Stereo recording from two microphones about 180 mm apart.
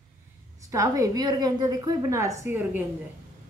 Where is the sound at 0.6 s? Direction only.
20° right (ahead or behind).